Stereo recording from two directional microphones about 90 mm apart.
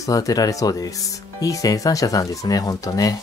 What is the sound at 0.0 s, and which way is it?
Speech, 40° left (ahead or behind).